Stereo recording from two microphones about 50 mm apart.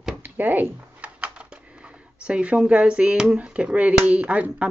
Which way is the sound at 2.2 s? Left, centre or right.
Right.